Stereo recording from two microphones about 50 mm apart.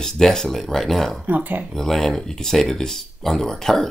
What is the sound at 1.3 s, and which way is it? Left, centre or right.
Speech, right.